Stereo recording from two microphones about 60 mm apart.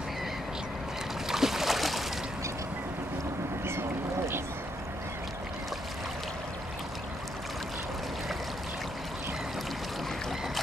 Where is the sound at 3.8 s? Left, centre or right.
Right.